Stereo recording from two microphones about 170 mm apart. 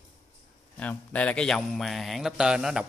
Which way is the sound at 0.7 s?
10° left (ahead or behind).